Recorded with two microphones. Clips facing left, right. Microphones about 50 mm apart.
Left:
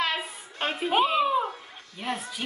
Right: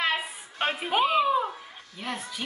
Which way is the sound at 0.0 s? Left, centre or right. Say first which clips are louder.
Right 1 dB; centre.